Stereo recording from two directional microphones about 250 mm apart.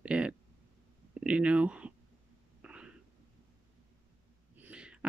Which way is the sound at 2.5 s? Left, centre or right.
Centre.